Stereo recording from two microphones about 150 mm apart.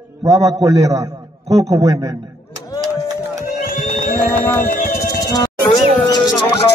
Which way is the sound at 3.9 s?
75° left (ahead or behind).